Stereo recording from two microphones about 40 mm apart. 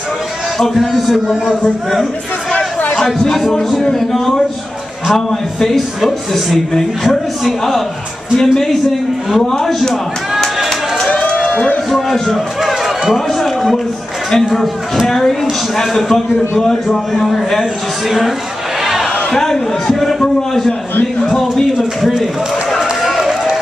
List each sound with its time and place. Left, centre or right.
0.7 s speech: centre
1.3 s a man's voice: centre
2.5 s chatter: left
3.3 s a man's voice: centre
11.2 s a sound: centre
11.9 s a man's voice: centre
18.0 s speech: centre
19.3 s a man's voice: centre
22.2 s run: centre